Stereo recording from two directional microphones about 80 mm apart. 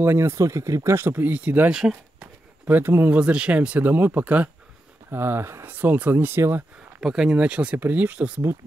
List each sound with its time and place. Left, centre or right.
0.0 s speech: right
1.7 s speech: centre
2.1 s speech: right
7.0 s speech: centre